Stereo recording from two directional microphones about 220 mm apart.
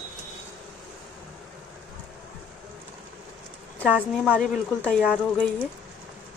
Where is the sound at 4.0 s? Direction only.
5° left (ahead or behind).